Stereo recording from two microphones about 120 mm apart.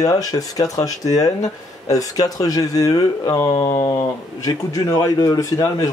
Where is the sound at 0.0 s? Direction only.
30° left (ahead or behind).